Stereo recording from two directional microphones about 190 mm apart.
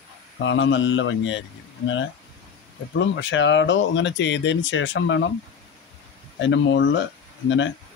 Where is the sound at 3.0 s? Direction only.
80° left.